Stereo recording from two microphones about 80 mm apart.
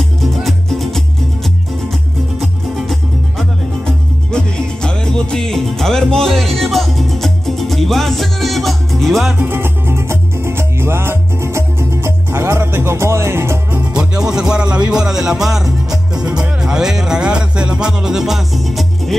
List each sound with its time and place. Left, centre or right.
0.2 s music: centre
2.7 s music: centre
9.4 s music: right
13.9 s music: centre